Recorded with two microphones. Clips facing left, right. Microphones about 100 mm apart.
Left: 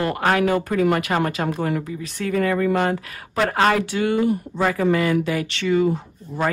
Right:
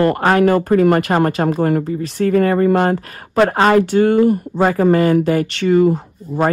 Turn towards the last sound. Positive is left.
turn(degrees=-45)  # may be behind; listen again after turning